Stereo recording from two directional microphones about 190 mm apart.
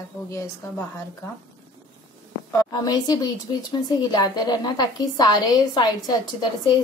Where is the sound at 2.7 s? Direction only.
20° left (ahead or behind).